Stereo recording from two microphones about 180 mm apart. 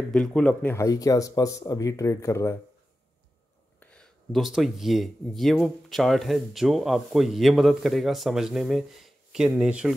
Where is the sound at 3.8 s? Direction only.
5° left (ahead or behind).